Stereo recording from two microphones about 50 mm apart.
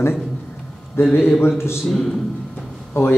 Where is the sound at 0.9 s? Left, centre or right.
Left.